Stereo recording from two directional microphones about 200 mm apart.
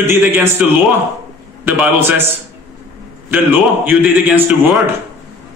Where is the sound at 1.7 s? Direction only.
10° right (ahead or behind).